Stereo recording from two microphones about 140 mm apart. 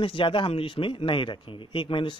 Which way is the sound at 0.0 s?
40° left (ahead or behind).